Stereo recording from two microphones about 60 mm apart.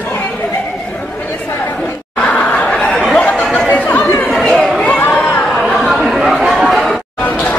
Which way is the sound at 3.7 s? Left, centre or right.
Left.